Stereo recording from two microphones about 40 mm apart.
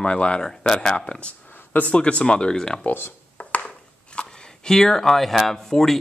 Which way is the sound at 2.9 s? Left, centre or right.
Left.